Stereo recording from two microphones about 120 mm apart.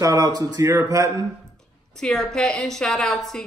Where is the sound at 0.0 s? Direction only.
30° right (ahead or behind).